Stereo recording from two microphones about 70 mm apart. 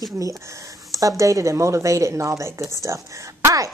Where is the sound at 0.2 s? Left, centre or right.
Right.